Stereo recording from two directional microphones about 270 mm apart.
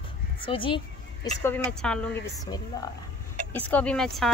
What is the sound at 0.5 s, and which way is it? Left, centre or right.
Speech, centre.